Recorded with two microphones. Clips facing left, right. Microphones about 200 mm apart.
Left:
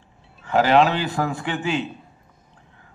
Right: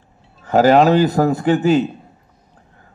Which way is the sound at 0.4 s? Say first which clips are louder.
Right 5 dB; 40° right (ahead or behind).